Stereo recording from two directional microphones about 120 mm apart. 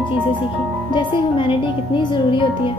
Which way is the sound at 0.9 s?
40° left (ahead or behind).